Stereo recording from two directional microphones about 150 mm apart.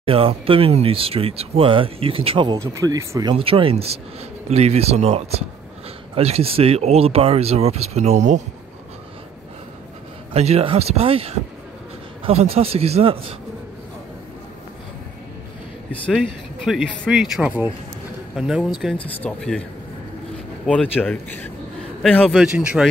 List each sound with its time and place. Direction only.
0.0 s speech: 40° right (ahead or behind); by 3.3 s 25° right (ahead or behind)
3.3 s speech: 40° right (ahead or behind)
10.3 s speech: 45° right (ahead or behind)
15.9 s speech: 5° left (ahead or behind)
20.6 s speech: 10° left (ahead or behind)
22.3 s speech: 5° right (ahead or behind)